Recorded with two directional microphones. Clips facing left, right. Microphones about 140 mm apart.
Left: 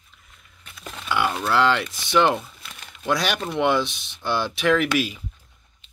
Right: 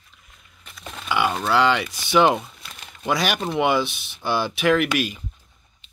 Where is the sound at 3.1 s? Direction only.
5° right (ahead or behind).